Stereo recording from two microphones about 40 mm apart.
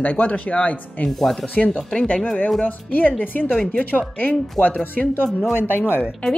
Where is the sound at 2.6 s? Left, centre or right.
Left.